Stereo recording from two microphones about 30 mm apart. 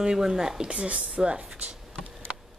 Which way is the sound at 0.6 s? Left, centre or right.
Right.